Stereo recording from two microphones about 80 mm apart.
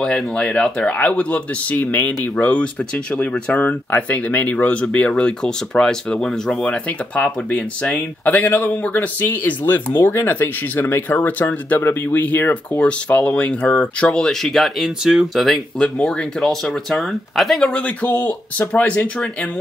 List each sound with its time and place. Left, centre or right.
0.0 s speech: centre
15.4 s speech: centre
17.6 s speech: centre